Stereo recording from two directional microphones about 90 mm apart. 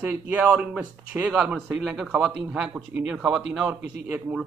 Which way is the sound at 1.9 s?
5° right (ahead or behind).